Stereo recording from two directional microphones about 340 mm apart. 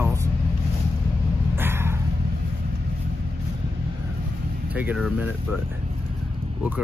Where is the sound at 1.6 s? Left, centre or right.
Centre.